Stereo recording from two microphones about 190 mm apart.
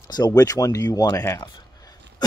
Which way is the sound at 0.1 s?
20° left (ahead or behind).